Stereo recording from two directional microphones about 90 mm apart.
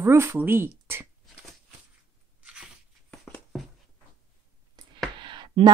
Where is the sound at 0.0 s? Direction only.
30° right (ahead or behind).